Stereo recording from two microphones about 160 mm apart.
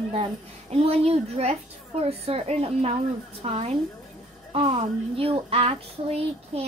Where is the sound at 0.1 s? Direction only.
40° right (ahead or behind).